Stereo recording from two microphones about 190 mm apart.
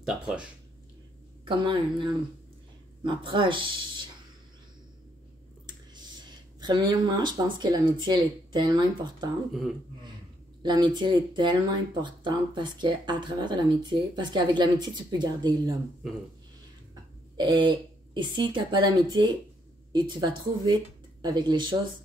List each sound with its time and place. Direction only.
0.0 s speech: 5° right (ahead or behind)
1.4 s speech: 25° right (ahead or behind)
6.6 s speech: 25° right (ahead or behind)
9.5 s speech: centre (ahead or behind)
10.6 s speech: 25° right (ahead or behind)
17.4 s speech: 25° right (ahead or behind)